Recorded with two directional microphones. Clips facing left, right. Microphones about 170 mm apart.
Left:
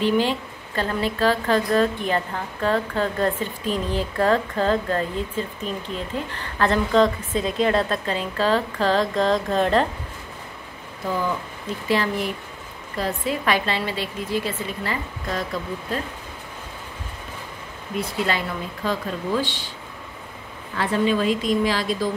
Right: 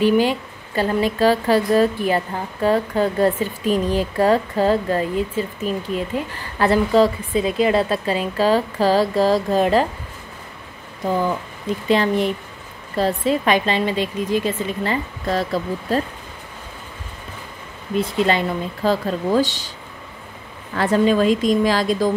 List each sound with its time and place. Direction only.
0.0 s speech: 10° right (ahead or behind)
11.9 s a woman's voice: 25° right (ahead or behind)
18.0 s a woman's voice: 20° right (ahead or behind)
18.9 s speech: 40° right (ahead or behind)
20.7 s a woman's voice: 45° right (ahead or behind)